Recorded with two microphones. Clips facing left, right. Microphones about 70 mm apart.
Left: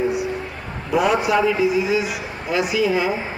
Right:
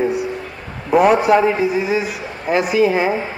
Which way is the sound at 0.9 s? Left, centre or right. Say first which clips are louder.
Right 6 dB; right.